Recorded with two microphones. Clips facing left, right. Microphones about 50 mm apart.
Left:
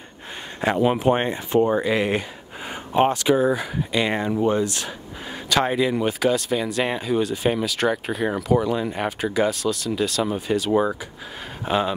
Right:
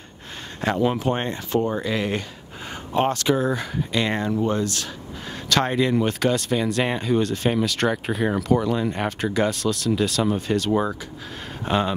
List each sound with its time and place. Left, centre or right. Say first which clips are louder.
0.6 s speech: left 2 dB; centre